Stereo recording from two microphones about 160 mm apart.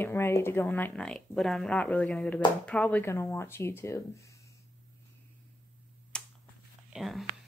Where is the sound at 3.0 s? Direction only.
15° left (ahead or behind).